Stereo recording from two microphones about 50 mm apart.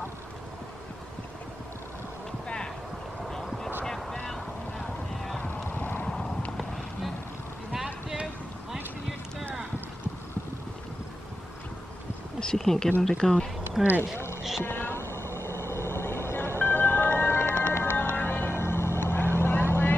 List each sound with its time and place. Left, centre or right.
2.4 s clip-clop: centre
3.8 s boat: centre
5.1 s a sound: centre
5.4 s vehicle: left
6.5 s a sound: centre
7.7 s a sound: centre
12.4 s speech: centre
13.8 s speech: centre
14.1 s music: left
14.6 s vehicle: left